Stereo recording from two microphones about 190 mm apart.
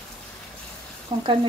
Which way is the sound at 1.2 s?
25° right (ahead or behind).